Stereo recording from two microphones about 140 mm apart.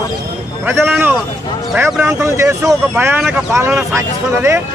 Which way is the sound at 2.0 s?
20° right (ahead or behind).